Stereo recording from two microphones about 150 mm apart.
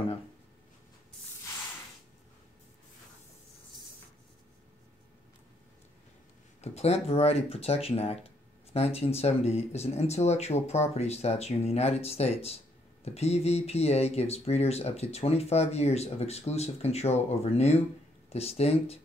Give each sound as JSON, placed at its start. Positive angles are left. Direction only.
{"t": 6.6, "sound": "speech", "side_deg": 45}